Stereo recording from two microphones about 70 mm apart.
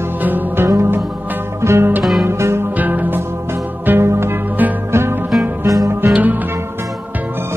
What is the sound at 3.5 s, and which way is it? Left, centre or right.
Music, right.